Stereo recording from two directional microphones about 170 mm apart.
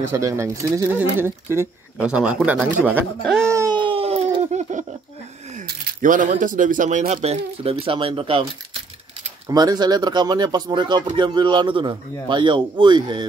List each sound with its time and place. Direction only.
0.1 s speech: 15° right (ahead or behind)
3.7 s a sound: 30° right (ahead or behind)
5.7 s speech: 50° right (ahead or behind)
7.2 s speech: 35° right (ahead or behind)
9.5 s speech: 25° right (ahead or behind)